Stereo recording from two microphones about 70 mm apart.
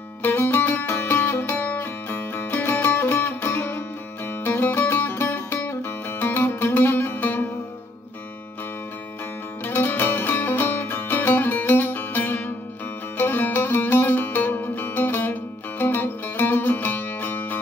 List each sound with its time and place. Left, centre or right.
0.2 s music: left
9.7 s music: left